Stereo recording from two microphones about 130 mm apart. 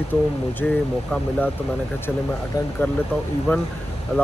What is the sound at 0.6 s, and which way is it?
Speech, 5° left (ahead or behind).